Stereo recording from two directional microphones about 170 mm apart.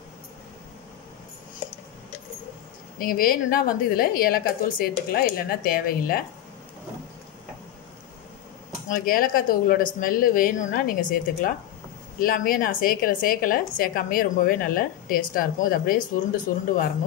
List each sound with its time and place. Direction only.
3.0 s a woman's voice: 60° left (ahead or behind)
8.8 s a woman's voice: 55° left (ahead or behind)